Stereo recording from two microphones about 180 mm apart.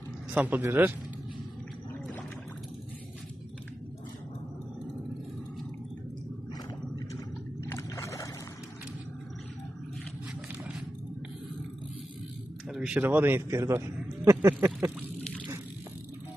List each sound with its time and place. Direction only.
0.3 s speech: 10° right (ahead or behind)
7.6 s a sound: 15° left (ahead or behind)
12.6 s a man's voice: 5° right (ahead or behind)